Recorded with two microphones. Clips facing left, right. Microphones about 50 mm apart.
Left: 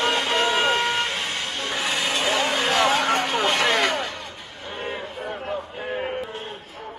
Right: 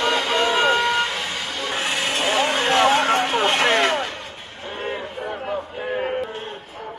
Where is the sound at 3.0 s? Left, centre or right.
Right.